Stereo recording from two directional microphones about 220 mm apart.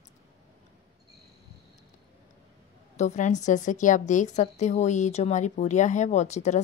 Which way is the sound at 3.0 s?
30° left (ahead or behind).